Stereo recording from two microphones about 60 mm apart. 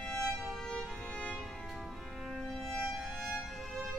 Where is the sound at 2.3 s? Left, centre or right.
Centre.